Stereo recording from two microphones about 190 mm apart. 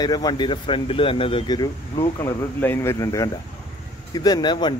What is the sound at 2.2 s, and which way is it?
A man's voice, 15° left (ahead or behind).